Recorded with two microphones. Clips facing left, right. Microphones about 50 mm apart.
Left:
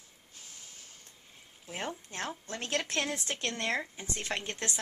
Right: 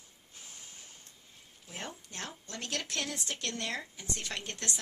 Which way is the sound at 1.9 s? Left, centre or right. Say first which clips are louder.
Left 6 dB; left.